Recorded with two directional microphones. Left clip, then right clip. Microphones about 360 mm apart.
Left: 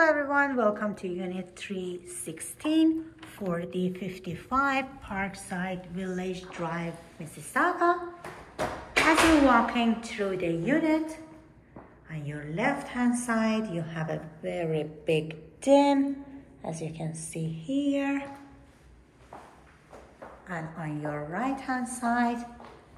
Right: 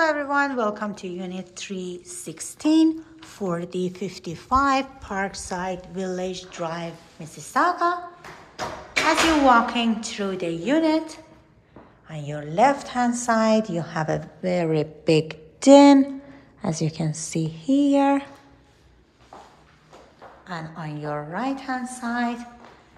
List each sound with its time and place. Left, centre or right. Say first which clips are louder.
0.0 s speech: right 2 dB; centre
9.5 s speech: right 6 dB; centre
12.1 s speech: right 6 dB; centre
13.9 s a woman's voice: right 9 dB; right
17.9 s speech: right 10 dB; centre
20.4 s a woman's voice: right 3 dB; centre